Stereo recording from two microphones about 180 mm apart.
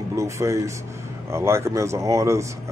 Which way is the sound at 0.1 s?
15° right (ahead or behind).